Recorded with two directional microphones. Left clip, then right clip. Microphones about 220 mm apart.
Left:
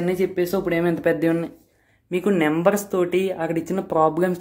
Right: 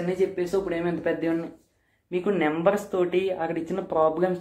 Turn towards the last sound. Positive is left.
turn(degrees=40)  # may be behind; listen again after turning